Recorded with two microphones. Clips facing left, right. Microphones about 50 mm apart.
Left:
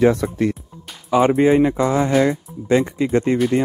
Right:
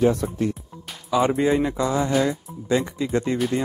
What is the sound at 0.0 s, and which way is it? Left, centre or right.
Speech, left.